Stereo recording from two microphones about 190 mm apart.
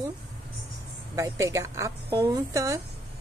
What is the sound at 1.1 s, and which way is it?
Speech, 15° right (ahead or behind).